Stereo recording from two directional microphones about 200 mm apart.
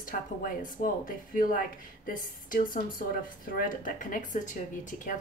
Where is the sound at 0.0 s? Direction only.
40° left (ahead or behind).